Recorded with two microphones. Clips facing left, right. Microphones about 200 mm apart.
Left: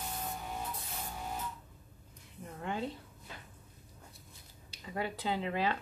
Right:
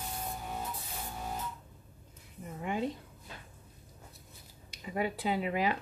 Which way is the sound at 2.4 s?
10° right (ahead or behind).